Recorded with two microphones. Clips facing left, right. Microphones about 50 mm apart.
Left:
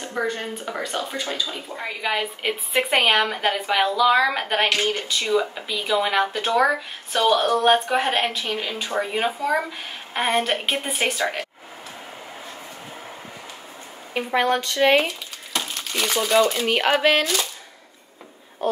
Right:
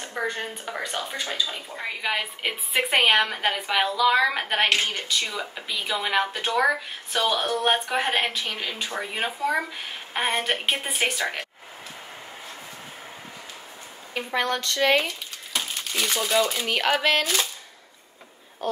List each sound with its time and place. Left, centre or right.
0.1 s speech: centre
5.2 s speech: centre
5.5 s speech: centre
14.1 s speech: centre
15.5 s speech: centre
18.6 s a sound: centre